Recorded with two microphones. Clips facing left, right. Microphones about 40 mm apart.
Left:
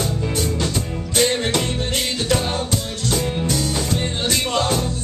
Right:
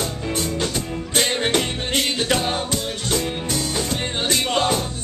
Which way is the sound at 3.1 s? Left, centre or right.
Centre.